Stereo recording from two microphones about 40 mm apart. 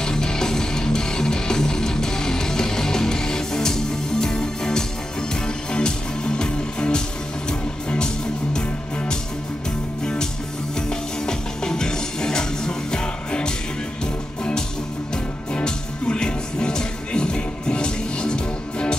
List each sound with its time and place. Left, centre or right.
0.0 s music: centre
8.5 s music: centre
10.9 s music: centre
15.5 s music: left